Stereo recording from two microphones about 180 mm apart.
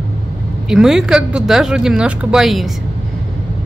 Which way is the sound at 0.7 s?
5° right (ahead or behind).